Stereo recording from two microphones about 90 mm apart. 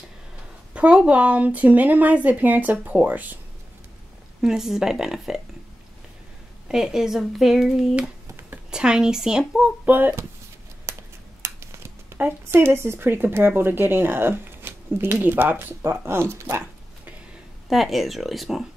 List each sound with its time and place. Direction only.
0.7 s a woman's voice: 15° right (ahead or behind)
4.4 s speech: 5° right (ahead or behind)
6.7 s a woman's voice: 5° right (ahead or behind)
9.8 s speech: 20° right (ahead or behind)
10.9 s a sound: 30° right (ahead or behind)
11.4 s speech: 30° right (ahead or behind)
17.6 s speech: centre (ahead or behind)